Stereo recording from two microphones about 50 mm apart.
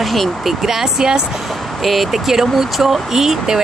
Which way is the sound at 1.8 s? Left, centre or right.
Centre.